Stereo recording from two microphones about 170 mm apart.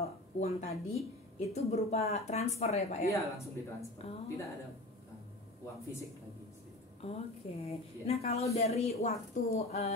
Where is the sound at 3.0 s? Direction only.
20° left (ahead or behind).